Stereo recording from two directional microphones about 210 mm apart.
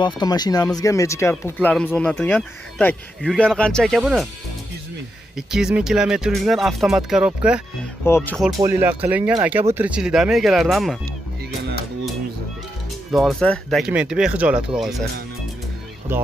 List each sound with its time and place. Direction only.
0.0 s speech: 20° left (ahead or behind); by 4.3 s centre (ahead or behind)
5.5 s speech: 5° right (ahead or behind)
8.0 s speech: 10° left (ahead or behind)
8.5 s speech: 10° right (ahead or behind)
13.1 s speech: centre (ahead or behind)
16.1 s speech: 10° right (ahead or behind)